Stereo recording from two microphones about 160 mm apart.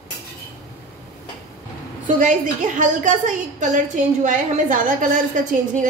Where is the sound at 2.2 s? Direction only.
55° right (ahead or behind).